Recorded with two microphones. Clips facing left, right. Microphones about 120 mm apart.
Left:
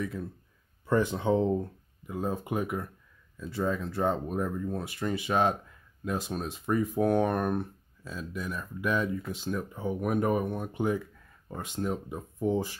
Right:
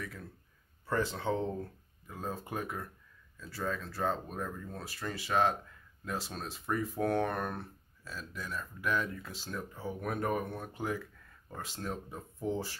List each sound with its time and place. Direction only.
0.0 s speech: 25° left (ahead or behind)